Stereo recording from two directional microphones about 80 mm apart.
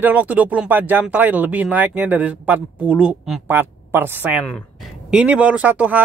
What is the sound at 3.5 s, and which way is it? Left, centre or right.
Speech, right.